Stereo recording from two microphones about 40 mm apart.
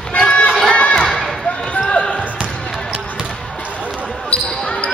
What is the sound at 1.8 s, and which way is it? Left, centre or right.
Basketball bounce, left.